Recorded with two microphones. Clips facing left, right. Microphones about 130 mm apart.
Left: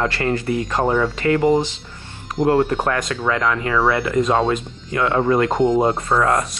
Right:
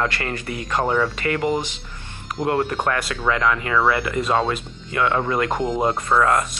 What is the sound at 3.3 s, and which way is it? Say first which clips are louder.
Speech: even; centre (ahead or behind).